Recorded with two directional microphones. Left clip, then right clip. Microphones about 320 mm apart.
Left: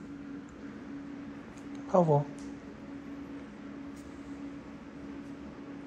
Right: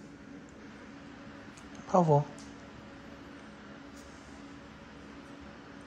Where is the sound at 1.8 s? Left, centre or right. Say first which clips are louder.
Even; centre.